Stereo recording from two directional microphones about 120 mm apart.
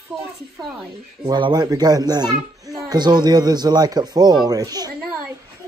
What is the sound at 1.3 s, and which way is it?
A child's voice, 35° right (ahead or behind).